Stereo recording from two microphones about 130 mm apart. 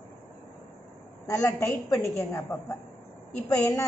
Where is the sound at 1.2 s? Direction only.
25° left (ahead or behind).